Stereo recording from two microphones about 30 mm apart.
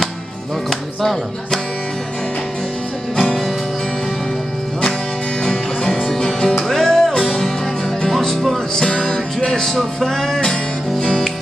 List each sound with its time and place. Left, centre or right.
5.9 s music: centre
11.0 s music: left